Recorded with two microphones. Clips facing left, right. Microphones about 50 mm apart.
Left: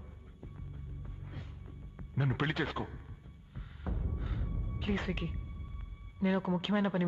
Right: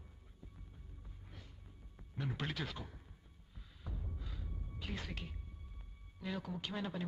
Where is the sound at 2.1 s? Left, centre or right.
Left.